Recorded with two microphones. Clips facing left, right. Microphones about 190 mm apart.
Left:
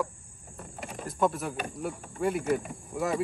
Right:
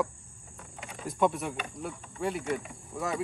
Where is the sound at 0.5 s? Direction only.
40° left (ahead or behind).